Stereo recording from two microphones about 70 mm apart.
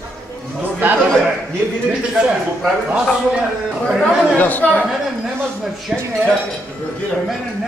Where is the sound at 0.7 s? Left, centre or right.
Right.